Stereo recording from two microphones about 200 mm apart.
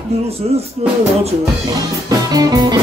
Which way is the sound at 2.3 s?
20° right (ahead or behind).